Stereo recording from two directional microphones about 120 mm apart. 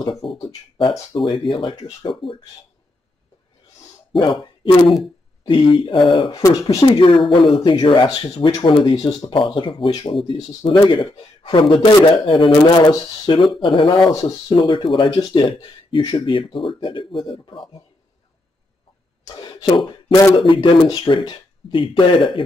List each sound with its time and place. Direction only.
0.2 s speech: 45° left (ahead or behind)
4.2 s speech: 40° left (ahead or behind)
6.4 s speech: 30° left (ahead or behind); by 17.8 s 45° left (ahead or behind)
19.2 s a sound: 35° left (ahead or behind)
20.3 s speech: 45° left (ahead or behind)